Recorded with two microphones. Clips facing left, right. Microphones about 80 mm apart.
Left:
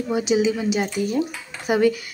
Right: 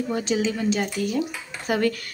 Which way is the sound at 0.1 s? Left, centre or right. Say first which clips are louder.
Left 7 dB; centre.